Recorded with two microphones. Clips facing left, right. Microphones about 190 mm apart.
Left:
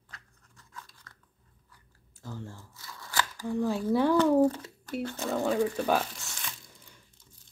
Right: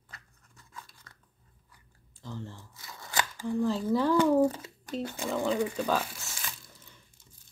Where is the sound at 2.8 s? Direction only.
20° right (ahead or behind).